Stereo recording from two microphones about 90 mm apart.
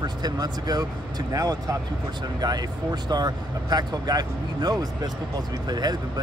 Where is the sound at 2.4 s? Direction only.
50° right (ahead or behind).